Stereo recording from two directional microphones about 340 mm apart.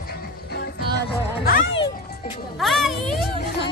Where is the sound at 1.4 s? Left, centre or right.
Left.